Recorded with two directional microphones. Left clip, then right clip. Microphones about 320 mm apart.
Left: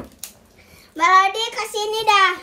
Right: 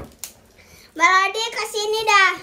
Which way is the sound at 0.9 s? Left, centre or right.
Centre.